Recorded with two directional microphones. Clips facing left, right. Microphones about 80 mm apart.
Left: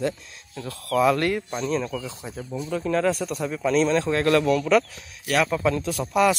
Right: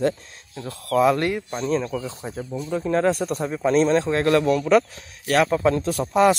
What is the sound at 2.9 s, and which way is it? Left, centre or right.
Speech, right.